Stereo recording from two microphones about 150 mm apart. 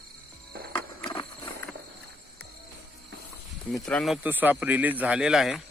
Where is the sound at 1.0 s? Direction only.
35° left (ahead or behind).